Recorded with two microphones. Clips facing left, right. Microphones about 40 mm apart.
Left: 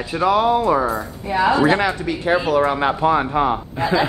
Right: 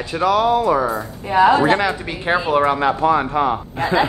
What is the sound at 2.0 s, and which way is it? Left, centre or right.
Speech, right.